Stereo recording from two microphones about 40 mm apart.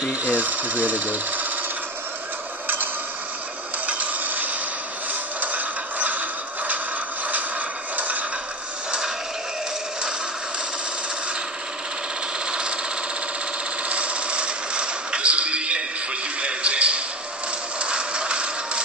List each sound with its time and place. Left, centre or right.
0.2 s speech: right
3.8 s a sound: right
5.4 s music: right
7.9 s music: right
12.4 s jackhammer: right
13.8 s a sound: right